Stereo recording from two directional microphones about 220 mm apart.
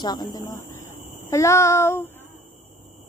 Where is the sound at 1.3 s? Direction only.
15° left (ahead or behind).